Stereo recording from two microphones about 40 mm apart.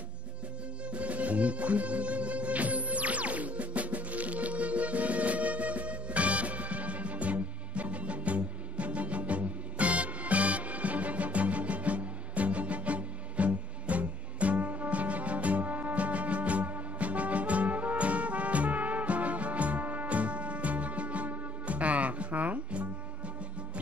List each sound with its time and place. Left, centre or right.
0.8 s music: right